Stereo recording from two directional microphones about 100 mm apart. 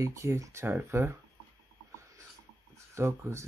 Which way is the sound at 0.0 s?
30° right (ahead or behind).